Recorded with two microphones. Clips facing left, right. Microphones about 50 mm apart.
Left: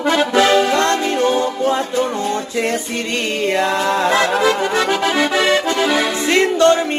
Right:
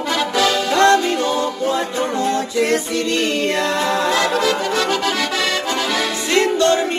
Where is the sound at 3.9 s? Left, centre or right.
Left.